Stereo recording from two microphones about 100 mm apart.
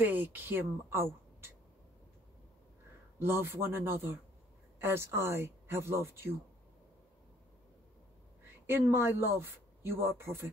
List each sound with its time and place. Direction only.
0.0 s speech: 20° right (ahead or behind)
3.2 s speech: 25° right (ahead or behind)
8.6 s speech: 25° right (ahead or behind)